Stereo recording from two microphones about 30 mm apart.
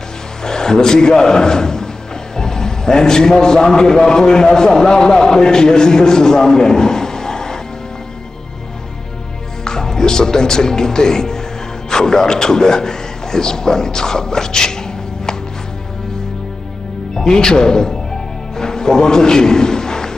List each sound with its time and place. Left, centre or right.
0.4 s a man's voice: left
9.7 s music: left
11.9 s a man's voice: left
17.1 s a man's voice: left
18.6 s a sound: left